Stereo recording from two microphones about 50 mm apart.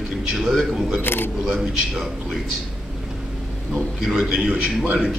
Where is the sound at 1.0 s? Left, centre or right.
Left.